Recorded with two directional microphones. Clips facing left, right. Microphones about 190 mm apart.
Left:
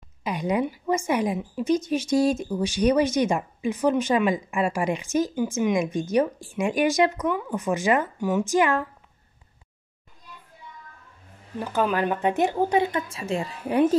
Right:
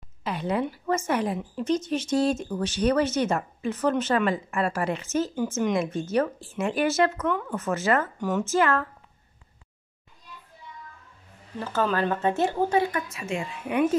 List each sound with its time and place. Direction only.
0.2 s a woman's voice: 15° left (ahead or behind)
11.6 s a woman's voice: 15° left (ahead or behind); by 13.9 s 35° left (ahead or behind)